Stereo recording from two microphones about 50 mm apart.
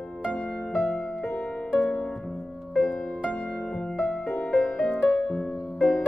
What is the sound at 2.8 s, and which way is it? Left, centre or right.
Music, centre.